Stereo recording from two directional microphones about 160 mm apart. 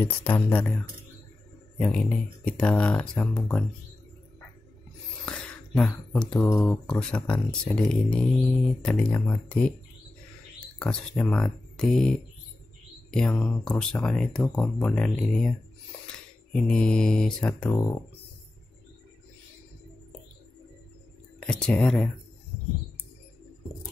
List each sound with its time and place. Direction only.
0.0 s speech: 10° left (ahead or behind)
1.8 s speech: 5° left (ahead or behind)
5.2 s a sound: 5° left (ahead or behind)
6.6 s speech: 5° left (ahead or behind)
10.8 s speech: 5° left (ahead or behind)
16.5 s speech: 5° left (ahead or behind)
21.4 s speech: 5° left (ahead or behind)